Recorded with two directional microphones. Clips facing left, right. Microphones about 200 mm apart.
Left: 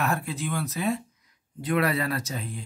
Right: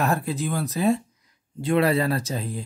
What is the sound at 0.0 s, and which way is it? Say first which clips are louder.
Speech: right 4 dB; 35° right (ahead or behind).